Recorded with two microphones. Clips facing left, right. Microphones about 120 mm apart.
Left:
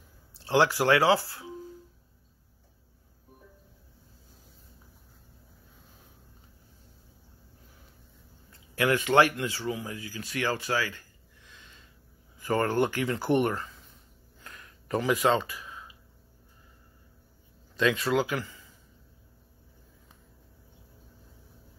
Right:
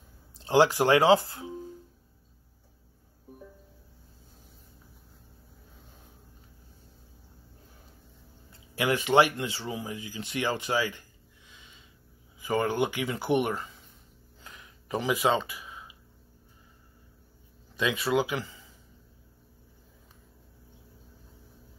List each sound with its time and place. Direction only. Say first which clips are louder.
0.4 s speech: right 2 dB; 20° right (ahead or behind)
8.7 s speech: even; 20° right (ahead or behind)
14.4 s a sound: left 1 dB; 15° right (ahead or behind)
17.7 s speech: left 1 dB; 10° right (ahead or behind)